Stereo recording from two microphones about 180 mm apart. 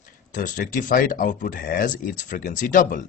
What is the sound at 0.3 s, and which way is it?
Speech, 45° left (ahead or behind).